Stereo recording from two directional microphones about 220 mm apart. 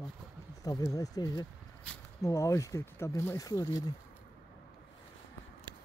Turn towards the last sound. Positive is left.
turn(degrees=15)  # may be behind; listen again after turning